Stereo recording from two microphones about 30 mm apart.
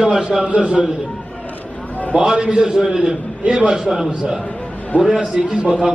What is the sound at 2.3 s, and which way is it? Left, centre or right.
Speech, right.